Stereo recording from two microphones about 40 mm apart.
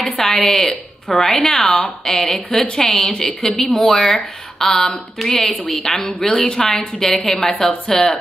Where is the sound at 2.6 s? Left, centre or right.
Left.